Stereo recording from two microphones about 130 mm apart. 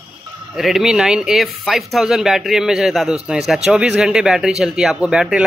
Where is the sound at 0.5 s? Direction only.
Centre (ahead or behind).